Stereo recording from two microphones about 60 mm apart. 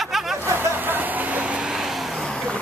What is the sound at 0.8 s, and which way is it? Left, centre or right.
Vehicle, right.